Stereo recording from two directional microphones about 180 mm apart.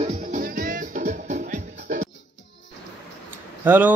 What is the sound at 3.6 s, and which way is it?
Speech, 10° right (ahead or behind).